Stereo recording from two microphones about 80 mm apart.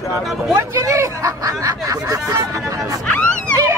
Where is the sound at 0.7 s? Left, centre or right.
Right.